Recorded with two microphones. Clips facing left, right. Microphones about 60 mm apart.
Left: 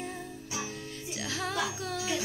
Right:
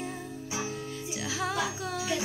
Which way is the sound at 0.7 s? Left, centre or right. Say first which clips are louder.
Right 4 dB; centre.